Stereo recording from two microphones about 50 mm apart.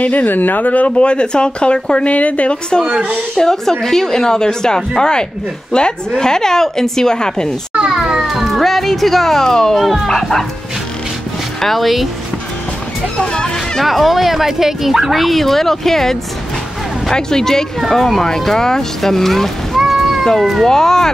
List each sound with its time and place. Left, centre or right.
0.0 s speech: left
2.9 s a woman's voice: right
3.3 s speech: centre
7.9 s children playing: centre
8.3 s cat: centre
9.8 s speech: centre
11.6 s speech: centre
13.2 s speech: centre
13.7 s speech: centre
19.8 s cat: centre
20.6 s speech: centre